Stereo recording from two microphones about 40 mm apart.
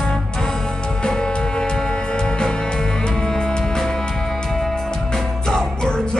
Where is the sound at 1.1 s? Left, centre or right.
Left.